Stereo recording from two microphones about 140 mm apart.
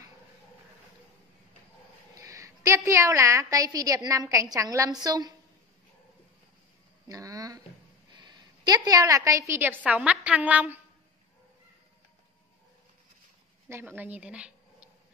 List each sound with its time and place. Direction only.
2.1 s a woman's voice: 20° right (ahead or behind)
7.1 s a sound: 25° right (ahead or behind)
8.2 s a woman's voice: 30° right (ahead or behind); by 10.8 s 10° right (ahead or behind)
13.7 s speech: 15° right (ahead or behind)